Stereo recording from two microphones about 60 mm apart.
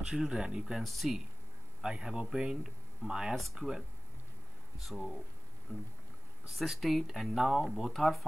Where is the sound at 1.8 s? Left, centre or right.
Centre.